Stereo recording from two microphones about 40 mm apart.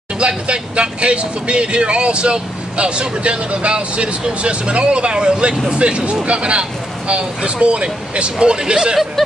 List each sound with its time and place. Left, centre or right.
0.5 s speech: right